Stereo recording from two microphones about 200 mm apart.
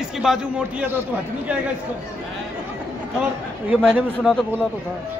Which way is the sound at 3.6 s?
10° right (ahead or behind).